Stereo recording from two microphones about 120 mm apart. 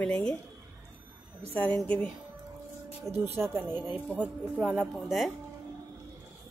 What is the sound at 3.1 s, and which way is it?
Speech, 20° right (ahead or behind).